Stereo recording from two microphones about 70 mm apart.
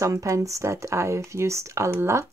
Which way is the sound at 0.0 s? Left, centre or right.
Right.